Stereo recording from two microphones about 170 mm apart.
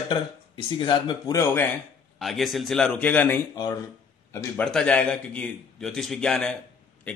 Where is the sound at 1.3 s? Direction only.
10° left (ahead or behind).